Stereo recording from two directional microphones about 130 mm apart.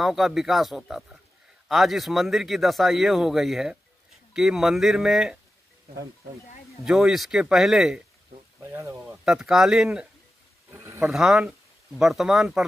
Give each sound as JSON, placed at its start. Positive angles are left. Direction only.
{"t": 0.0, "sound": "speech", "side_deg": 0}
{"t": 6.8, "sound": "speech", "side_deg": -5}
{"t": 8.5, "sound": "a sound", "side_deg": -20}
{"t": 9.2, "sound": "speech", "side_deg": -5}
{"t": 10.7, "sound": "a sound", "side_deg": -20}
{"t": 11.1, "sound": "speech", "side_deg": -5}